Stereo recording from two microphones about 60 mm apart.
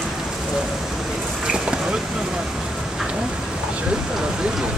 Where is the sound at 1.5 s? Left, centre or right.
Centre.